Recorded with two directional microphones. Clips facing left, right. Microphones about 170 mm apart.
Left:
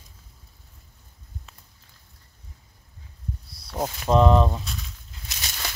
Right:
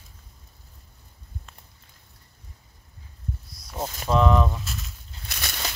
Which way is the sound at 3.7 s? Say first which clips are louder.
Left 3 dB; 30° left (ahead or behind).